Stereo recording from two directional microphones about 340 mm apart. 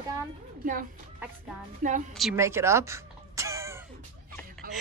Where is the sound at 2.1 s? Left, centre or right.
Centre.